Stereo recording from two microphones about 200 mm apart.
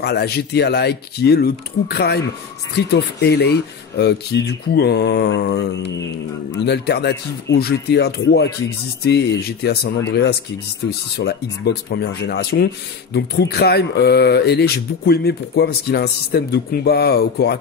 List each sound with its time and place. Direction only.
0.0 s speech: 55° left (ahead or behind)